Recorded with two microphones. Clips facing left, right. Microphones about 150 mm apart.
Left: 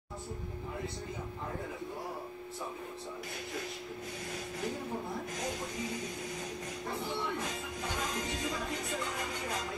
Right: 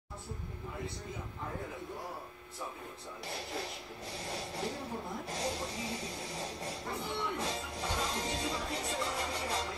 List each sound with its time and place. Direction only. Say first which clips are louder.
4.3 s speech: even; 30° right (ahead or behind)
5.3 s rub: right 1 dB; 30° right (ahead or behind)
7.3 s music: right 1 dB; 35° right (ahead or behind)